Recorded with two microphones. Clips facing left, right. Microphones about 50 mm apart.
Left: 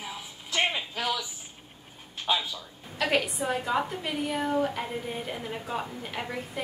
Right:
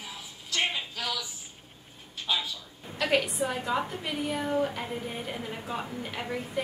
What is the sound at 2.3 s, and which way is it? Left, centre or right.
Speech, left.